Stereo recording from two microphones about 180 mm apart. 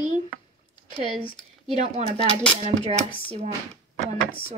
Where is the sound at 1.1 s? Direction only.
25° left (ahead or behind).